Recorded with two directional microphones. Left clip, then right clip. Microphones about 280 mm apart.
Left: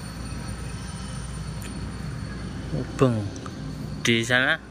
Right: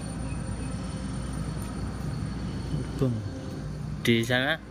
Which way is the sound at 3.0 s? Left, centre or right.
Left.